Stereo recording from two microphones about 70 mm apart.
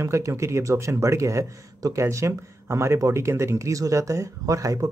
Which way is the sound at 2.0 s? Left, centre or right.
Right.